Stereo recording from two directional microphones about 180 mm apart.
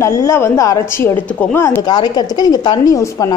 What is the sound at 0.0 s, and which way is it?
Speech, 15° left (ahead or behind).